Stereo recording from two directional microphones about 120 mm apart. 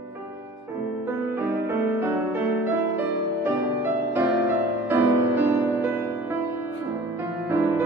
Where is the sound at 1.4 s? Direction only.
20° right (ahead or behind).